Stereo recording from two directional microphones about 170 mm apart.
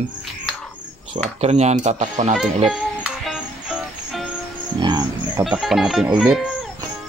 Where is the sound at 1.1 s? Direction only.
40° right (ahead or behind).